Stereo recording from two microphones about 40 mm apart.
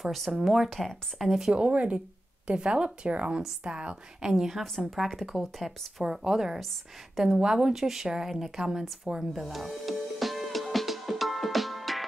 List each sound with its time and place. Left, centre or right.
0.0 s speech: centre
1.5 s a woman's voice: right
4.9 s speech: centre
6.0 s a woman's voice: centre
9.0 s music: centre